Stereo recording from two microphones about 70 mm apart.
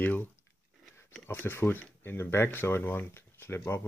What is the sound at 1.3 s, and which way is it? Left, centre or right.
Speech, left.